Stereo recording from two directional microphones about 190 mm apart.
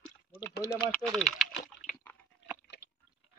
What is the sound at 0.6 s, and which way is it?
Speech, 20° left (ahead or behind).